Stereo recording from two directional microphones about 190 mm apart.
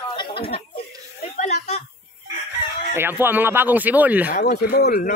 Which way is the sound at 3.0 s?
10° right (ahead or behind).